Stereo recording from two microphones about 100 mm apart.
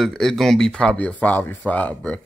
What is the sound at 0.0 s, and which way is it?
Speech, 5° left (ahead or behind).